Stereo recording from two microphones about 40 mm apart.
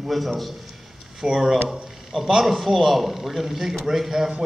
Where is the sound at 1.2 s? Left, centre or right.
Centre.